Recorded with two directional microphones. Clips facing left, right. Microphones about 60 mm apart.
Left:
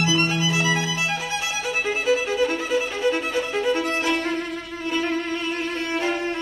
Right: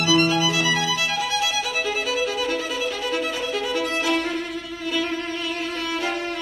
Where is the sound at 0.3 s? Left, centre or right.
Left.